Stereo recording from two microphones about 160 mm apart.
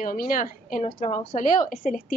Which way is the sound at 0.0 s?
60° left (ahead or behind).